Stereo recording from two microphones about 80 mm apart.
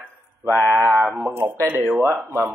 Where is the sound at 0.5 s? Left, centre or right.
Right.